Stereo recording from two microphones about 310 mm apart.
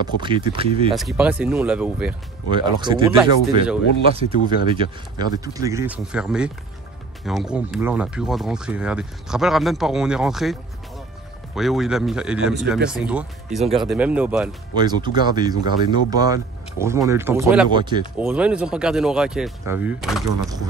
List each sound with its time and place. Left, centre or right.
0.0 s speech: centre
0.9 s speech: centre
2.5 s speech: centre
4.6 s speech: centre
18.2 s speech: centre